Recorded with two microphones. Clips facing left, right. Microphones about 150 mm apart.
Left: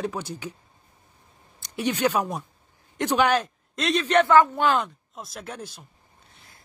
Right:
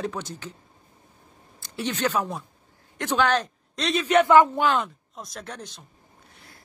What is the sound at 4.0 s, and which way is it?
Speech, 10° right (ahead or behind).